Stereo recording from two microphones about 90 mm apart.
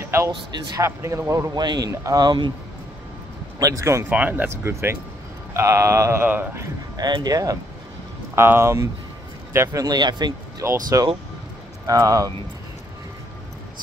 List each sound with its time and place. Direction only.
0.0 s a sound: 30° right (ahead or behind)
0.7 s a man's voice: 35° right (ahead or behind)
1.6 s a man's voice: 55° right (ahead or behind)
1.9 s a man's voice: 35° right (ahead or behind)
2.2 s a man's voice: 55° right (ahead or behind)
3.5 s a man's voice: 40° right (ahead or behind)
4.1 s a man's voice: 20° right (ahead or behind)
6.2 s speech: 20° right (ahead or behind)
7.0 s speech: 50° right (ahead or behind)
8.4 s speech: 30° right (ahead or behind)
9.8 s speech: 50° right (ahead or behind)
10.6 s speech: 30° right (ahead or behind)
11.8 s a man's voice: 40° right (ahead or behind)